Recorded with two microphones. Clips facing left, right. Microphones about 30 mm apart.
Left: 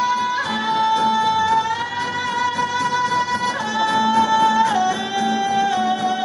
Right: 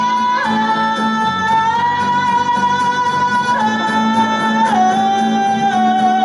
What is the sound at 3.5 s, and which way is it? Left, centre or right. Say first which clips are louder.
Music: right 4 dB; centre.